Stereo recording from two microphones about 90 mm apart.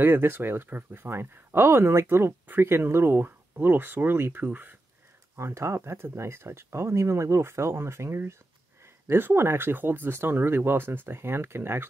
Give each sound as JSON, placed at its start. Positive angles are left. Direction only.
{"t": 0.0, "sound": "speech", "side_deg": -25}
{"t": 5.3, "sound": "speech", "side_deg": -30}